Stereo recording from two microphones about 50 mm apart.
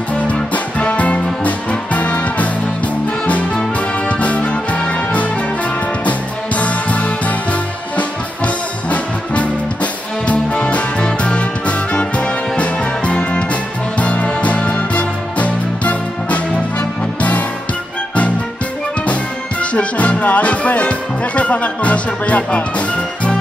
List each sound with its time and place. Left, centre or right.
0.3 s music: left
3.5 s music: left
19.6 s music: left